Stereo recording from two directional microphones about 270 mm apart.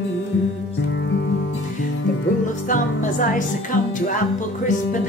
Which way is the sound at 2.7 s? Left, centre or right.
Left.